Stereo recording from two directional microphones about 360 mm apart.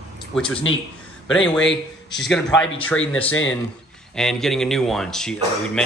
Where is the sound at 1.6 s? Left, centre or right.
Left.